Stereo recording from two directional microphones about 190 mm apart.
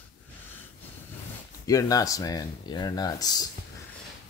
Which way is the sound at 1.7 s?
15° left (ahead or behind).